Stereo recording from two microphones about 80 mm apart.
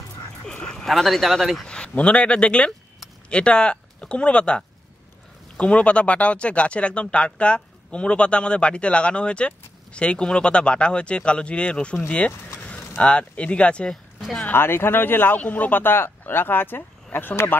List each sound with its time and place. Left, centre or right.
0.5 s speech: centre
1.7 s speech: centre
14.4 s speech: left